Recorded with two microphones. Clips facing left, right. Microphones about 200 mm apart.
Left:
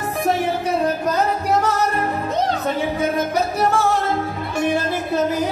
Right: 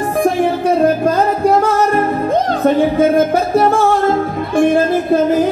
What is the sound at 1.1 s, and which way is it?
Music, 50° right (ahead or behind).